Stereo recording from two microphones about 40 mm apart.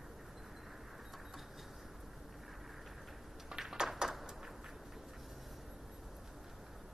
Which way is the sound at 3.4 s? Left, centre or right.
Centre.